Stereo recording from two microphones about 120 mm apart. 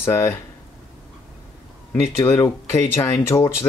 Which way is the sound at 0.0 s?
20° left (ahead or behind).